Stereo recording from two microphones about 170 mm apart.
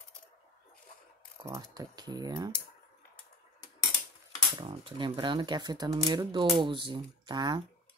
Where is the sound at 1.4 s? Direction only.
20° right (ahead or behind).